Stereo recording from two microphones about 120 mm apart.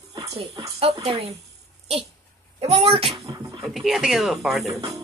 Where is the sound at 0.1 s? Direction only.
30° right (ahead or behind).